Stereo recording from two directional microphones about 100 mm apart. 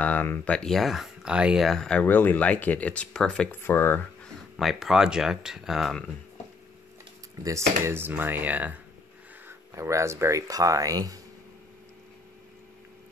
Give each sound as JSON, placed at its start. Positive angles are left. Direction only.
{"t": 0.0, "sound": "speech", "side_deg": 15}
{"t": 0.6, "sound": "speech", "side_deg": 5}
{"t": 2.0, "sound": "speech", "side_deg": 20}
{"t": 3.6, "sound": "speech", "side_deg": 25}
{"t": 4.6, "sound": "speech", "side_deg": 0}
{"t": 7.4, "sound": "speech", "side_deg": -30}
{"t": 9.5, "sound": "speech", "side_deg": -30}